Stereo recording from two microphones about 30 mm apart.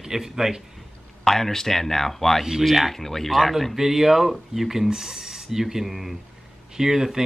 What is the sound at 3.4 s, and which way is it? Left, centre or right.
Speech, centre.